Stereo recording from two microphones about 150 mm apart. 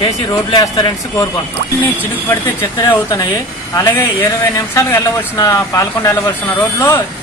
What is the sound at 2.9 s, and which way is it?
Speech, 20° left (ahead or behind).